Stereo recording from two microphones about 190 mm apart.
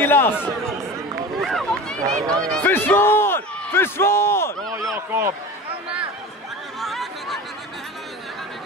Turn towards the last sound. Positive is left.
turn(degrees=0)  # may be behind; listen again after turning